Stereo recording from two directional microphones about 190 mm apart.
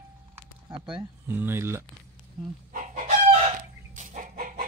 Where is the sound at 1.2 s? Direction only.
10° right (ahead or behind).